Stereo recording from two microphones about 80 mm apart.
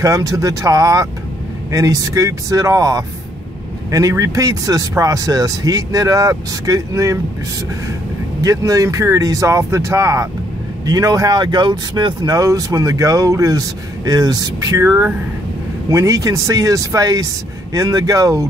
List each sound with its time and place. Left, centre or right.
0.0 s speech: right
8.4 s speech: right
14.8 s speech: right